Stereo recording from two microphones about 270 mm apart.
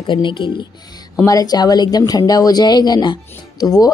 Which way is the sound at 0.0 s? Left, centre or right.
Centre.